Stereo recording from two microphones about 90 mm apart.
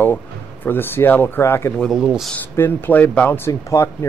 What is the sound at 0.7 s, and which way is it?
Speech, 25° left (ahead or behind).